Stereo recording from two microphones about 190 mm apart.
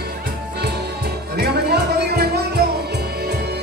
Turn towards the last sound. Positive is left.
turn(degrees=-60)  # may be behind; listen again after turning